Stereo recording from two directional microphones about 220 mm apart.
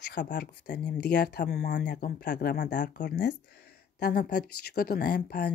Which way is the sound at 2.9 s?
35° left (ahead or behind).